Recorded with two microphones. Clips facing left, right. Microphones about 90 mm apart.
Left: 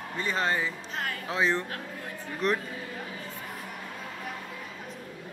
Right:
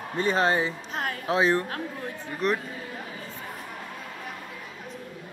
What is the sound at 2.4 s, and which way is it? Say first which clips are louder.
Speech: right 2 dB; centre (ahead or behind).